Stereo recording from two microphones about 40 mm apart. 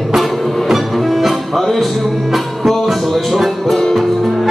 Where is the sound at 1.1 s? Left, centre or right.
Centre.